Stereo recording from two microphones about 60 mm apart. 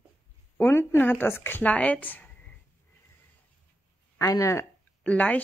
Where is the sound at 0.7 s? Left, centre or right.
Left.